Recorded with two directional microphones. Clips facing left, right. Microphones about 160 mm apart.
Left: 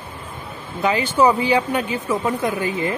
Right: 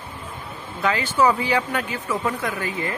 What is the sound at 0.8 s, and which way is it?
Speech, 20° left (ahead or behind).